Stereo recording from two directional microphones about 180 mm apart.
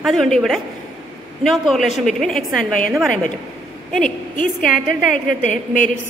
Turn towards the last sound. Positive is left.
turn(degrees=45)  # may be behind; listen again after turning